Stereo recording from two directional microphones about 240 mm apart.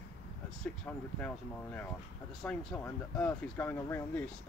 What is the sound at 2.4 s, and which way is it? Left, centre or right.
Speech, centre.